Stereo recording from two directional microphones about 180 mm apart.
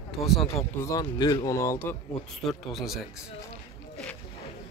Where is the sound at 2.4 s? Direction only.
Centre (ahead or behind).